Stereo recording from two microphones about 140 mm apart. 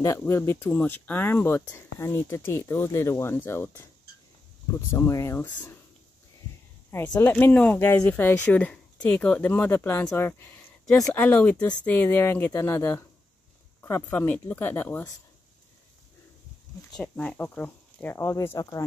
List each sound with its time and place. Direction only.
0.2 s speech: 15° left (ahead or behind)
7.2 s speech: 15° left (ahead or behind)
17.0 s speech: 10° left (ahead or behind)